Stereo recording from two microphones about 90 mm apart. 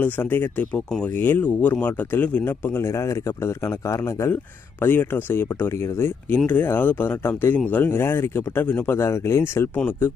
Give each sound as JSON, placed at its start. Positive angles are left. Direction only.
{"t": 0.0, "sound": "speech", "side_deg": 25}
{"t": 0.7, "sound": "speech", "side_deg": 10}